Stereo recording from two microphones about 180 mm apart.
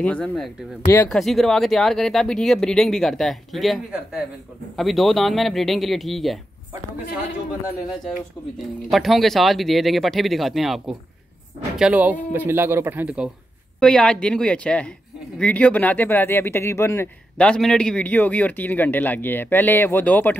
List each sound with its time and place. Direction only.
0.0 s speech: 5° left (ahead or behind)
8.9 s a man's voice: centre (ahead or behind)
13.7 s speech: 5° left (ahead or behind)